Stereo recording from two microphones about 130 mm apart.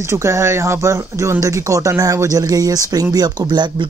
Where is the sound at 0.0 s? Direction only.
20° right (ahead or behind).